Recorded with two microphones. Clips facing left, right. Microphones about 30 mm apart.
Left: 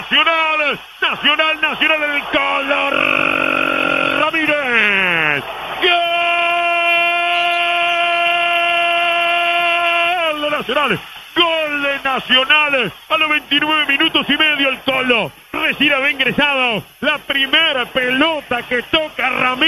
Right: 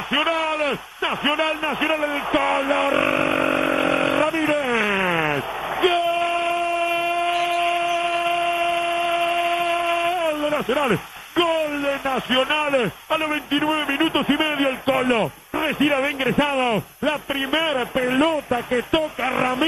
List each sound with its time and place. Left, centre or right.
0.1 s a man's voice: left
1.6 s speech: left
2.1 s speech: centre
3.0 s a sound: left
6.9 s a sound: left
12.5 s a man's voice: left
15.8 s a man's voice: left
18.3 s speech: centre
18.9 s a man's voice: left
19.3 s speech: centre